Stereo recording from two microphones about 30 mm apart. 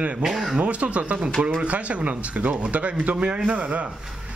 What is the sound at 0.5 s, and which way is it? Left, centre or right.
Speech, right.